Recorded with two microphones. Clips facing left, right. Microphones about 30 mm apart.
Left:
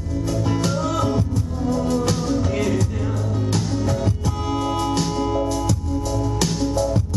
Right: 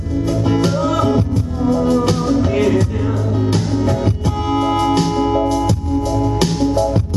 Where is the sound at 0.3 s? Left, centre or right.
Right.